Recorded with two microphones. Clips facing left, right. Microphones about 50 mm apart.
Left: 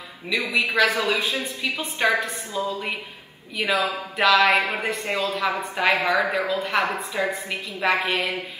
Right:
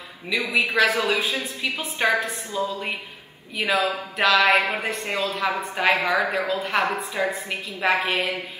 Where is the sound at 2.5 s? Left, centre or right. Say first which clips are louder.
Even; left.